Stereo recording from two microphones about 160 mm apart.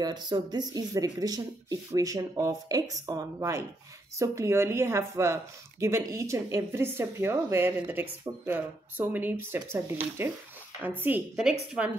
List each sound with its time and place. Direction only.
0.0 s a woman's voice: 25° right (ahead or behind); by 11.9 s centre (ahead or behind)